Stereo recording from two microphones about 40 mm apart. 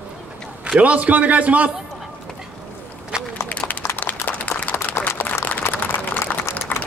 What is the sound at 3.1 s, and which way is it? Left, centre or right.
Run, centre.